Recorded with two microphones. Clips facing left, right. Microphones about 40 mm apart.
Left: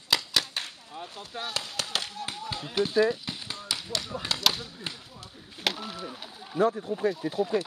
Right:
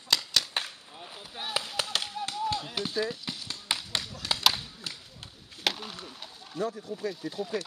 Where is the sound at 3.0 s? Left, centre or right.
Centre.